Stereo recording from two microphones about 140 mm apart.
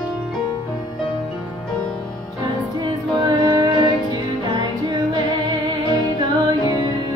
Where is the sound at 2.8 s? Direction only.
30° right (ahead or behind).